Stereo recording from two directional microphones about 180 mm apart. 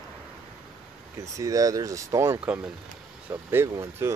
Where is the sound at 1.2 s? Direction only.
20° right (ahead or behind).